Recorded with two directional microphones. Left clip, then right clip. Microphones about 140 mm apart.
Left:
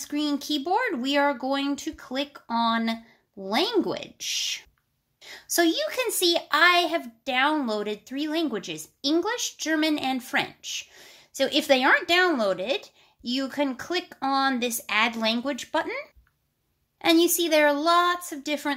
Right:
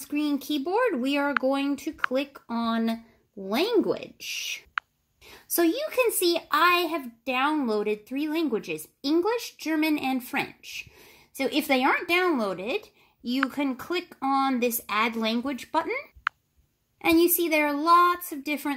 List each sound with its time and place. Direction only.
0.0 s speech: centre (ahead or behind)
17.0 s speech: centre (ahead or behind)